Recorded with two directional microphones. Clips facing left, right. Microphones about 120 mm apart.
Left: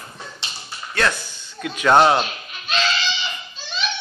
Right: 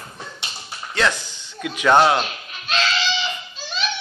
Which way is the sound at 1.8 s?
5° left (ahead or behind).